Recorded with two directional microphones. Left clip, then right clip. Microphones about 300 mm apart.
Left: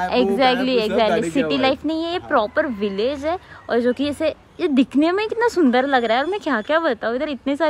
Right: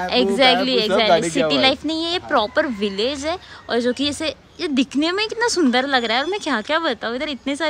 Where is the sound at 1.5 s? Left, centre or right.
Centre.